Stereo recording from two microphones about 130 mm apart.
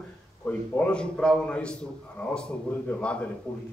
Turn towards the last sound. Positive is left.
turn(degrees=10)  # may be behind; listen again after turning